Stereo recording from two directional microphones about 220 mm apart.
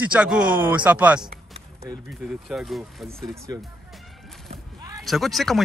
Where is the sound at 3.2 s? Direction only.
15° right (ahead or behind).